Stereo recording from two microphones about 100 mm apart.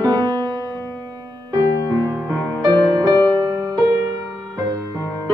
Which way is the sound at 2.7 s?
45° right (ahead or behind).